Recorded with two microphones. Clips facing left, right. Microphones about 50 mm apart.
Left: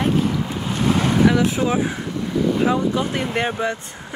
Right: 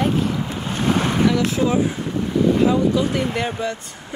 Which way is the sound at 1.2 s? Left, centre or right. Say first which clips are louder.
Left 1 dB; left.